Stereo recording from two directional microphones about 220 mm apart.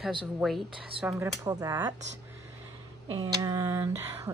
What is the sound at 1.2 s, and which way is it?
Speech, 15° right (ahead or behind).